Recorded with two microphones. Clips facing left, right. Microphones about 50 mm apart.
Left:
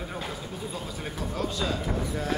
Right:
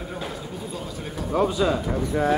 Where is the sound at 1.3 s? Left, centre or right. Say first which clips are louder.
Right 10 dB; centre.